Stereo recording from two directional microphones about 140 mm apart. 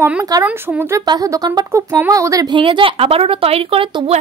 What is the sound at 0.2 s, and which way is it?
Speech, 25° right (ahead or behind).